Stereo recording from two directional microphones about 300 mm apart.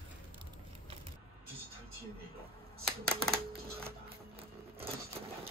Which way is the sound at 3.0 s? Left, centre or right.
Right.